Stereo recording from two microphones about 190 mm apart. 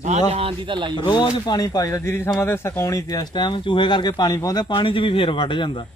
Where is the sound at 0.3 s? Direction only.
30° right (ahead or behind).